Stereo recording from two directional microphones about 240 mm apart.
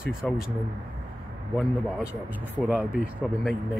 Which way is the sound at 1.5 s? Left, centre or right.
Centre.